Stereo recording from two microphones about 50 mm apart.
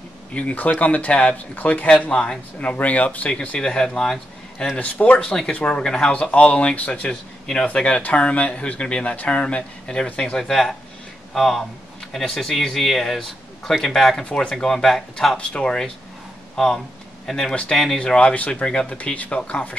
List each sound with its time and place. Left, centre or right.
0.3 s speech: left
3.3 s speech: centre
4.7 s speech: left; by 6.1 s centre
6.3 s speech: left
10.5 s speech: centre
15.3 s speech: centre
16.5 s speech: centre